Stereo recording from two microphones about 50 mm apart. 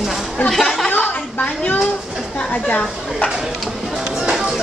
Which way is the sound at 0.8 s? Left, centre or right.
Left.